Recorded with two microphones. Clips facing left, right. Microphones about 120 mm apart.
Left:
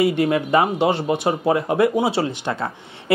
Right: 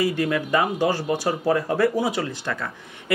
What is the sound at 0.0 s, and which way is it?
Speech, 25° left (ahead or behind).